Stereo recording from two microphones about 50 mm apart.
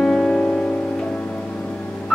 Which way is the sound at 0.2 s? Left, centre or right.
Centre.